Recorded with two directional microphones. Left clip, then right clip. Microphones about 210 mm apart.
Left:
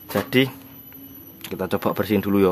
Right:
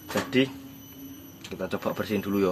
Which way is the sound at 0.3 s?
60° left (ahead or behind).